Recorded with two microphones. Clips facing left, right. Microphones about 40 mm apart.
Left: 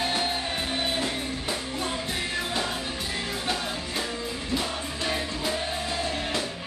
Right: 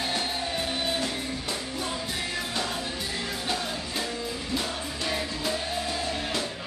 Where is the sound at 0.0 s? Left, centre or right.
Centre.